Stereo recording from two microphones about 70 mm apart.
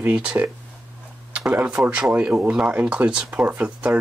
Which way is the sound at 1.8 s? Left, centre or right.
Centre.